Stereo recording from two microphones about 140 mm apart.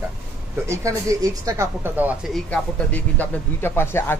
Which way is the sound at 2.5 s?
10° left (ahead or behind).